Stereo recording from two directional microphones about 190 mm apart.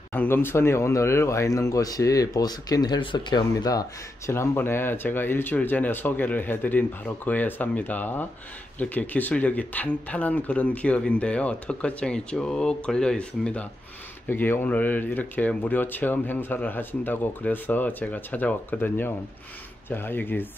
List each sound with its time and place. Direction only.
0.1 s speech: 10° left (ahead or behind)